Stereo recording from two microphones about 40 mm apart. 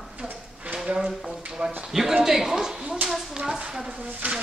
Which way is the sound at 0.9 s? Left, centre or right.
Centre.